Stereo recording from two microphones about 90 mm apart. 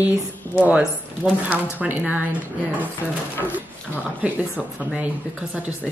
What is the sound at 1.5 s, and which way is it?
Speech, 15° right (ahead or behind).